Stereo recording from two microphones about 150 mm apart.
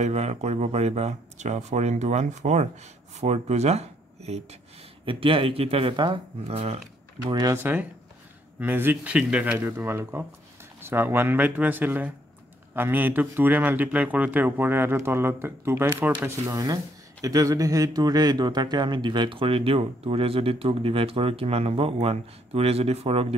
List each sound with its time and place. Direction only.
0.0 s speech: 45° right (ahead or behind)
7.2 s speech: 25° right (ahead or behind)
8.5 s speech: 15° right (ahead or behind); by 23.2 s 40° right (ahead or behind)